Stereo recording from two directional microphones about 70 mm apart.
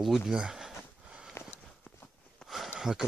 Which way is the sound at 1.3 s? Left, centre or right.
Left.